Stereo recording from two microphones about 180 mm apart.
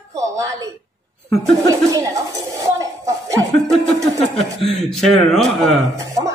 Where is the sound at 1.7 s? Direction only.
15° right (ahead or behind).